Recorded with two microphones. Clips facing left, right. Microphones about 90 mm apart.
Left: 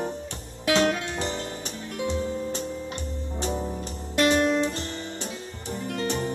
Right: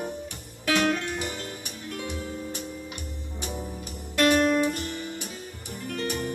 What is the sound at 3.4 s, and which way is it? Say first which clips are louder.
Music: left 6 dB; 25° left (ahead or behind).